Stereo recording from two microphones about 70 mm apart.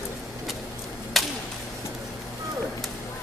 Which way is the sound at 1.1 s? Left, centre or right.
Centre.